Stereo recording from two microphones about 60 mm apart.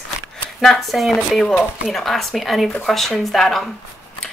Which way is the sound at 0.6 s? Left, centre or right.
Centre.